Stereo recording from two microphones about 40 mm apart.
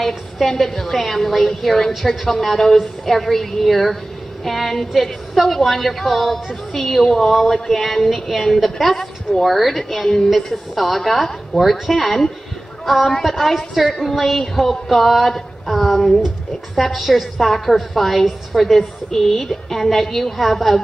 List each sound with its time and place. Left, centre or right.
0.0 s a woman's voice: centre
10.0 s a man's voice: centre
10.3 s a woman's voice: centre